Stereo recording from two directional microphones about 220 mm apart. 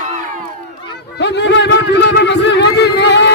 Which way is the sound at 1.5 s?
50° left (ahead or behind).